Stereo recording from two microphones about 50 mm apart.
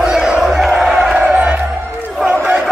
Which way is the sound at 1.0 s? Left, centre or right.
Centre.